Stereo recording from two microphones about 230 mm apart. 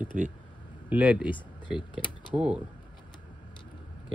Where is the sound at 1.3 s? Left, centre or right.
Left.